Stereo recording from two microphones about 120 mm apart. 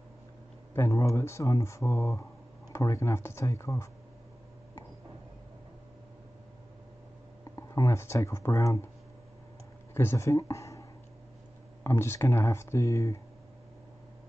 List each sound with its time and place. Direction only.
0.7 s speech: 25° left (ahead or behind)
7.5 s speech: 25° left (ahead or behind)
9.9 s speech: 25° left (ahead or behind)